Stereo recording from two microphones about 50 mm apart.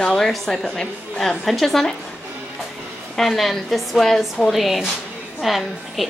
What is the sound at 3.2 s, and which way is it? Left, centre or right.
A woman's voice, centre.